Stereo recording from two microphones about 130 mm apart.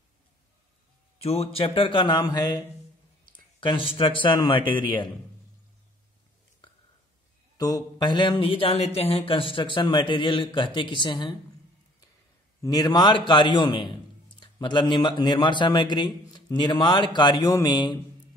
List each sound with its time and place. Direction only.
1.2 s speech: 50° left (ahead or behind); by 2.6 s 35° left (ahead or behind)
3.6 s speech: 45° left (ahead or behind)
7.5 s speech: 30° left (ahead or behind)
12.6 s speech: 30° left (ahead or behind)